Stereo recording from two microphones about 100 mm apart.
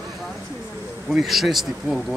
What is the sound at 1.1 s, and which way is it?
Speech, centre (ahead or behind).